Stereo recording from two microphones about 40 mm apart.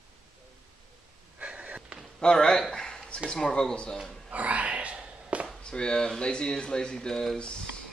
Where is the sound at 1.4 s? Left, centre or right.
Right.